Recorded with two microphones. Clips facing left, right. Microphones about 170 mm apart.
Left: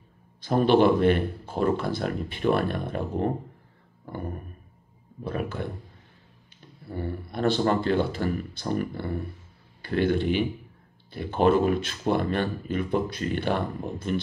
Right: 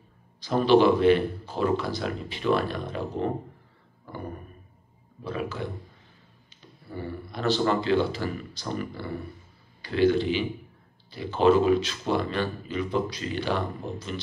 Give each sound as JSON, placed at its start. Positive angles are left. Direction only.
{"t": 0.4, "sound": "speech", "side_deg": 50}
{"t": 4.0, "sound": "a sound", "side_deg": 50}
{"t": 5.2, "sound": "speech", "side_deg": 55}
{"t": 7.0, "sound": "a man's voice", "side_deg": 55}